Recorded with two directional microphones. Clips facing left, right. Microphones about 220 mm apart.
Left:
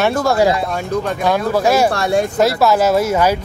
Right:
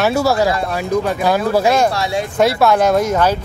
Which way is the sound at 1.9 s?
50° left (ahead or behind).